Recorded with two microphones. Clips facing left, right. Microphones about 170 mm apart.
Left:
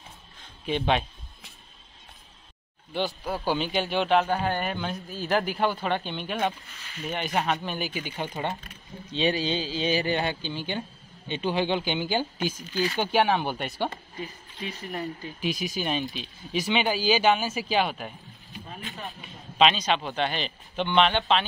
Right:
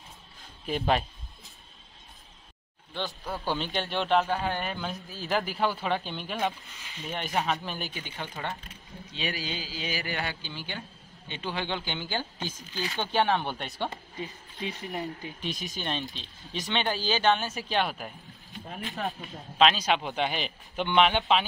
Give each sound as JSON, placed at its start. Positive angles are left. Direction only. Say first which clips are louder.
{"t": 0.4, "sound": "a sound", "louder": "left 3 dB", "side_deg": 0}
{"t": 3.4, "sound": "speech", "louder": "left 4 dB", "side_deg": 5}
{"t": 6.8, "sound": "speech", "louder": "left 5 dB", "side_deg": -20}
{"t": 7.1, "sound": "speech", "louder": "left 2 dB", "side_deg": 0}
{"t": 13.8, "sound": "speech", "louder": "left 2 dB", "side_deg": -20}
{"t": 15.4, "sound": "speech", "louder": "left 6 dB", "side_deg": 5}
{"t": 19.6, "sound": "speech", "louder": "left 1 dB", "side_deg": -5}